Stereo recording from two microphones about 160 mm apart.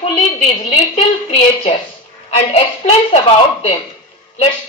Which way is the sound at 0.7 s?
45° left (ahead or behind).